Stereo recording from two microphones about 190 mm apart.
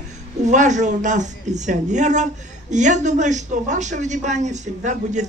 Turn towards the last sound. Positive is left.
turn(degrees=-40)  # may be behind; listen again after turning